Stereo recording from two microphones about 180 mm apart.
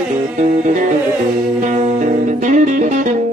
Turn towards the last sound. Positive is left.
turn(degrees=-45)  # may be behind; listen again after turning